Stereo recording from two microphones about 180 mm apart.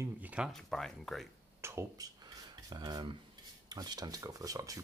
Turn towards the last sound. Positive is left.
turn(degrees=-20)  # may be behind; listen again after turning